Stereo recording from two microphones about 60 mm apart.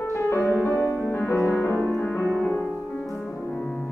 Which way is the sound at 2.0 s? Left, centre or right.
Left.